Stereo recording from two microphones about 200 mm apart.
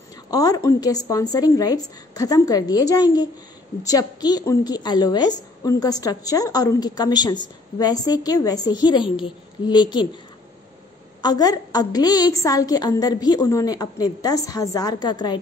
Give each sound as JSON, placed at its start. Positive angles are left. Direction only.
{"t": 0.3, "sound": "a woman's voice", "side_deg": 20}
{"t": 11.2, "sound": "a woman's voice", "side_deg": 20}